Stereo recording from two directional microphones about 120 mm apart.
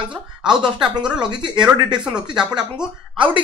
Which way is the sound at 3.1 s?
45° right (ahead or behind).